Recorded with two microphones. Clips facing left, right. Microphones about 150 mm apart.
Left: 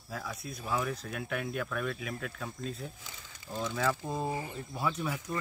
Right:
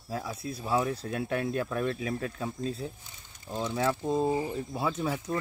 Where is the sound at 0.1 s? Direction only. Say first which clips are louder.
Right 5 dB; 30° right (ahead or behind).